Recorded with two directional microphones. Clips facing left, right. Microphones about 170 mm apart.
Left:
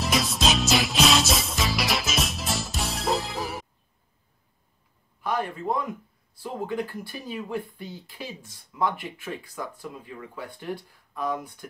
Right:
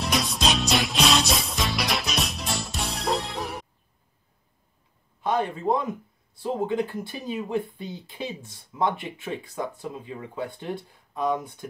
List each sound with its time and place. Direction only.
0.0 s music: centre (ahead or behind)
5.2 s a man's voice: 25° right (ahead or behind)